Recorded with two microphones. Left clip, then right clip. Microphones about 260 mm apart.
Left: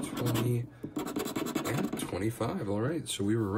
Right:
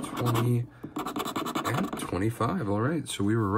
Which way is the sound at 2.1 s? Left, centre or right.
Right.